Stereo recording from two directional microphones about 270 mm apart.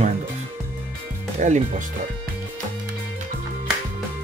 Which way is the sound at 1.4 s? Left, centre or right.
Right.